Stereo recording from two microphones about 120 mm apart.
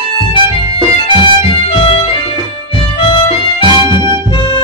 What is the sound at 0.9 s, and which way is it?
Music, 45° left (ahead or behind).